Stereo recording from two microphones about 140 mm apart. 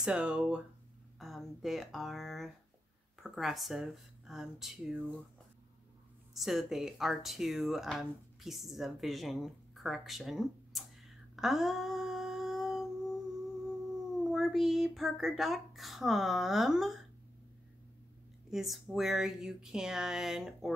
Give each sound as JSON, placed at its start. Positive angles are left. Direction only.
{"t": 0.0, "sound": "speech", "side_deg": -10}
{"t": 6.3, "sound": "speech", "side_deg": 0}
{"t": 11.3, "sound": "humming", "side_deg": 0}
{"t": 14.3, "sound": "speech", "side_deg": 0}
{"t": 18.5, "sound": "speech", "side_deg": 0}